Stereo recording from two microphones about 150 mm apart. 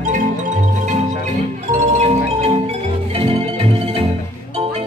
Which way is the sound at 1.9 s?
45° right (ahead or behind).